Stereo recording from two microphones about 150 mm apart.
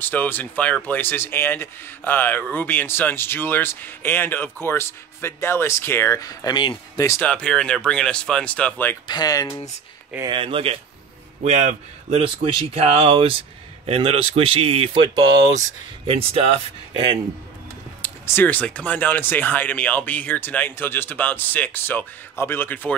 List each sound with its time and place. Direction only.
0.0 s speech: 10° left (ahead or behind); by 6.8 s 30° left (ahead or behind)
7.0 s speech: 20° left (ahead or behind)
7.2 s speech: 5° left (ahead or behind)
9.0 s speech: 25° left (ahead or behind)
10.2 s speech: 35° right (ahead or behind)
16.1 s speech: 40° right (ahead or behind)
18.0 s speech: 15° left (ahead or behind)